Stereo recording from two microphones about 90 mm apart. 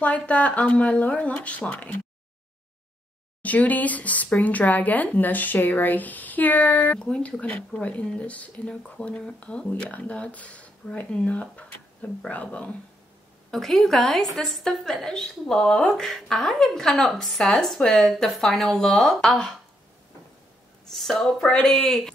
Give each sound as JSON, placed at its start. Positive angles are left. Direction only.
{"t": 0.0, "sound": "speech", "side_deg": 15}
{"t": 3.4, "sound": "speech", "side_deg": 15}
{"t": 13.5, "sound": "a woman's voice", "side_deg": 5}
{"t": 20.8, "sound": "a woman's voice", "side_deg": 5}